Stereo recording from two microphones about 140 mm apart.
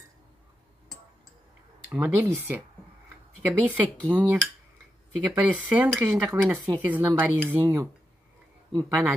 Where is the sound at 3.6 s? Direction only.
10° right (ahead or behind).